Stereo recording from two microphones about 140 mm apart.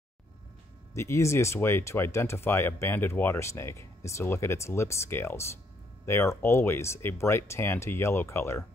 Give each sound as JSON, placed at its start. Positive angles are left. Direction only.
{"t": 0.9, "sound": "speech", "side_deg": 20}